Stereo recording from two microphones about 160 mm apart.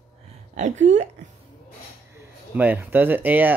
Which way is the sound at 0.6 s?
50° right (ahead or behind).